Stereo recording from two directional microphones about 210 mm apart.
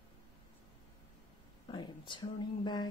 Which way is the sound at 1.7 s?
20° left (ahead or behind).